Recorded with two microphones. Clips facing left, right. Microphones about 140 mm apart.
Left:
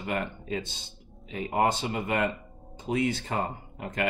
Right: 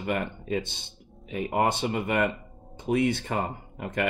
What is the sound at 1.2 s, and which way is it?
Speech, 60° right (ahead or behind).